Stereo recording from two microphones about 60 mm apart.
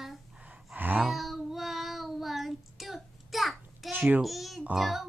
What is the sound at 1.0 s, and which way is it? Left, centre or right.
Child singing, centre.